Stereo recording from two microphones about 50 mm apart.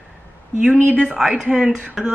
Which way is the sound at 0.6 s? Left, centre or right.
Right.